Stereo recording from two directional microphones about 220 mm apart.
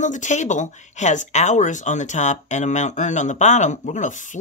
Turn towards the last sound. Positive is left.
turn(degrees=35)  # may be behind; listen again after turning